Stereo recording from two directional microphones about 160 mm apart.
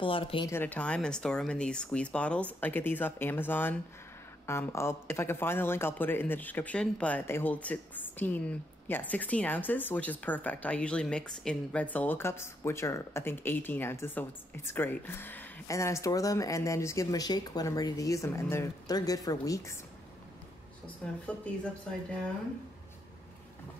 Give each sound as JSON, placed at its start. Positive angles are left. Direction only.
{"t": 0.0, "sound": "speech", "side_deg": 35}
{"t": 0.5, "sound": "speech", "side_deg": 10}
{"t": 21.0, "sound": "speech", "side_deg": 5}